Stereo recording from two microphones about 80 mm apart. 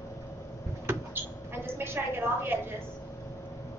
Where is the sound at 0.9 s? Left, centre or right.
Right.